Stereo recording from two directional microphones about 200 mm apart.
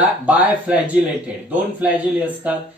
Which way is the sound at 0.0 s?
10° right (ahead or behind).